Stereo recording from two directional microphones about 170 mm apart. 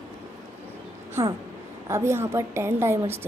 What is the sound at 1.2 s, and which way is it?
A woman's voice, 15° right (ahead or behind).